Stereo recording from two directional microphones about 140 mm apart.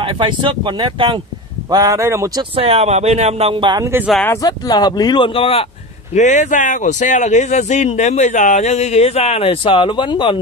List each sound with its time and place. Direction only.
0.0 s speech: 35° right (ahead or behind)
1.7 s a man's voice: 25° right (ahead or behind)
2.5 s speech: 45° right (ahead or behind)
3.8 s speech: 15° right (ahead or behind)
4.4 s speech: 30° left (ahead or behind)
6.1 s speech: 60° left (ahead or behind); by 10.3 s 35° left (ahead or behind)